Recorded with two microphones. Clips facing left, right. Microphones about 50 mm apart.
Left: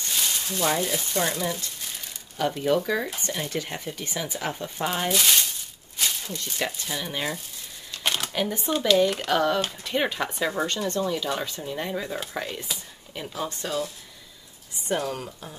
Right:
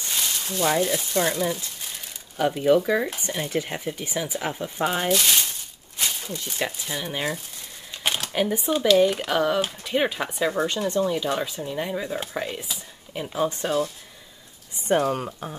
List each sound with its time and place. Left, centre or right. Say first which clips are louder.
0.2 s speech: right 2 dB; centre
7.9 s shuffling cards: right 1 dB; centre
8.3 s speech: right 3 dB; centre
14.9 s speech: right 6 dB; right